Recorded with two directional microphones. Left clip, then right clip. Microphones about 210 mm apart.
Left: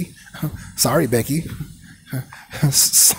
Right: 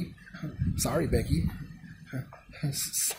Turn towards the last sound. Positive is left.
turn(degrees=40)  # may be behind; listen again after turning